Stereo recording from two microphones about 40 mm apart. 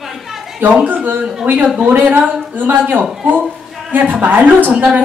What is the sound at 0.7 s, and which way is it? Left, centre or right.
A woman's voice, right.